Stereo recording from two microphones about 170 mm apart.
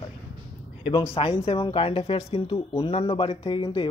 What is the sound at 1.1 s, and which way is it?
Speech, 35° left (ahead or behind).